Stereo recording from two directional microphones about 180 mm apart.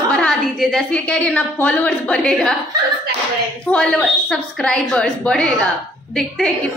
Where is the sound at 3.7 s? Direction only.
5° left (ahead or behind).